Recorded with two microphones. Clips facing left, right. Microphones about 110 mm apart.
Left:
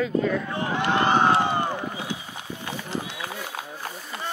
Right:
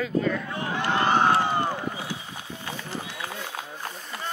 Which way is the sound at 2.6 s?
15° left (ahead or behind).